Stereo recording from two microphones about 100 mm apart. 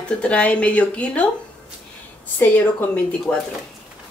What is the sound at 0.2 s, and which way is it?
Speech, 10° left (ahead or behind).